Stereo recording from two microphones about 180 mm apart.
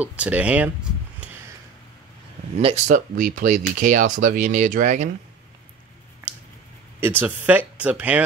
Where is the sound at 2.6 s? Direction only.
35° right (ahead or behind).